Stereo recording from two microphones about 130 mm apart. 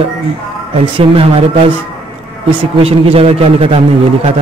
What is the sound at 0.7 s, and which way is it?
Speech, 45° right (ahead or behind).